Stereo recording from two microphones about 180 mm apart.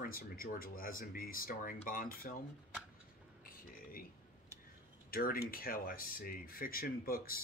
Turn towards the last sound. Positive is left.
turn(degrees=55)  # may be behind; listen again after turning